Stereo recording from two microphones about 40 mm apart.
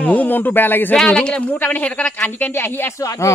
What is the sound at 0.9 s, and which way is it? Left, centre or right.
Speech, left.